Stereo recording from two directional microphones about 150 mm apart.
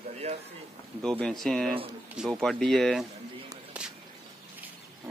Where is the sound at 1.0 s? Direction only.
5° left (ahead or behind).